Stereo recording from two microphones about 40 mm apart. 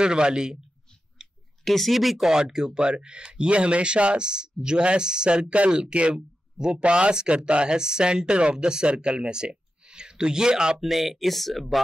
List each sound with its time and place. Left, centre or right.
0.0 s speech: right
1.6 s speech: centre
2.2 s speech: centre
10.8 s speech: centre